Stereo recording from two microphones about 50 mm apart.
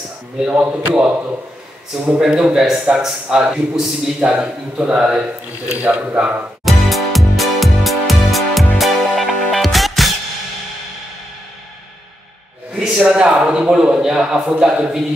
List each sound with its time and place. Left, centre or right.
0.5 s speech: right
2.1 s a man's voice: centre
5.8 s speech: right
6.6 s music: centre
12.7 s a man's voice: centre